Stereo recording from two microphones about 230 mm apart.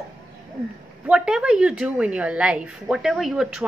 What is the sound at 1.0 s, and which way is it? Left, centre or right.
A woman's voice, centre.